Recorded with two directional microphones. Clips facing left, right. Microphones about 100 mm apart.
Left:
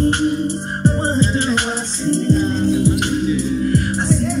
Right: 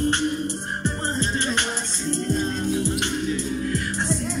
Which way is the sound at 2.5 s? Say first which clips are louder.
Left 8 dB; 35° left (ahead or behind).